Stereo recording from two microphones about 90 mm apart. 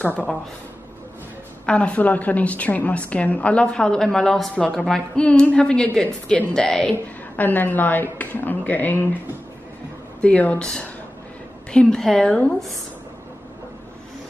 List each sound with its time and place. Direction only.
0.0 s a woman's voice: 20° left (ahead or behind)
1.7 s a woman's voice: 15° left (ahead or behind)
7.3 s a woman's voice: 20° left (ahead or behind)
10.2 s a woman's voice: 15° left (ahead or behind)